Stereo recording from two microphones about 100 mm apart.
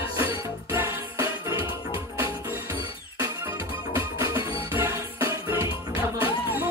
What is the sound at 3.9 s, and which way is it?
Music, 30° right (ahead or behind).